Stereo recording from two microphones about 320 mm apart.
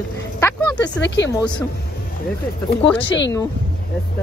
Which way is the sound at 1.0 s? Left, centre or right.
Left.